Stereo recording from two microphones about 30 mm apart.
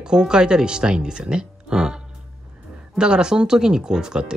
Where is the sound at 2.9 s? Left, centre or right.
Right.